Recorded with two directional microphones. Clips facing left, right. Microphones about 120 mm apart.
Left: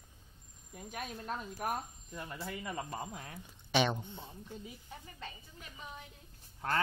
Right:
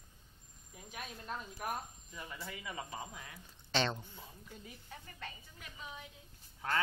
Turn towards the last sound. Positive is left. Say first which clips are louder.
# left 1 dB
turn(degrees=20)  # may be behind; listen again after turning